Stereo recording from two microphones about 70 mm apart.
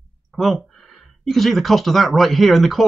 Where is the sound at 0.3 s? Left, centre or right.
Centre.